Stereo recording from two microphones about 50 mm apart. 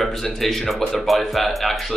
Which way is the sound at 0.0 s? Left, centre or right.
Centre.